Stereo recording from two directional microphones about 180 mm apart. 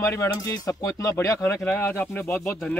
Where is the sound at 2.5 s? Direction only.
5° left (ahead or behind).